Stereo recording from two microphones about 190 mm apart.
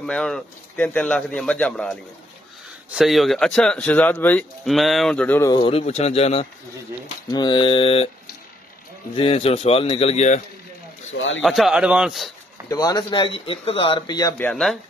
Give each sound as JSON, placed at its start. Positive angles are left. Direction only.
{"t": 0.0, "sound": "speech", "side_deg": 5}
{"t": 5.5, "sound": "a man's voice", "side_deg": 25}
{"t": 7.2, "sound": "speech", "side_deg": 20}
{"t": 9.1, "sound": "a man's voice", "side_deg": 30}
{"t": 11.1, "sound": "speech", "side_deg": 80}
{"t": 11.4, "sound": "speech", "side_deg": 0}
{"t": 12.6, "sound": "speech", "side_deg": 20}
{"t": 14.4, "sound": "speech", "side_deg": 0}